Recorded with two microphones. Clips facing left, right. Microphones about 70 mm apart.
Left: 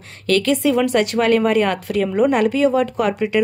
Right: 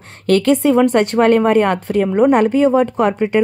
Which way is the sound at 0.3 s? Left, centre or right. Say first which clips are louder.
Right 4 dB; right.